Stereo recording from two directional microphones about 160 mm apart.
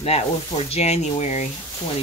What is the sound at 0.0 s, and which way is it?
Speech, 40° left (ahead or behind).